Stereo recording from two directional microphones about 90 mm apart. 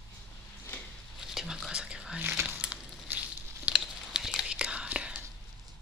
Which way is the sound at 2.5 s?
10° right (ahead or behind).